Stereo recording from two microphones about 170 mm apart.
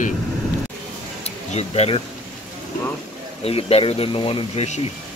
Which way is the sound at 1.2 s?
40° left (ahead or behind).